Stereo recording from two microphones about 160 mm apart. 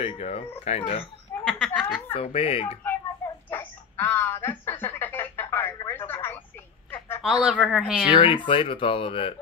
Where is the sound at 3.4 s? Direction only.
10° left (ahead or behind).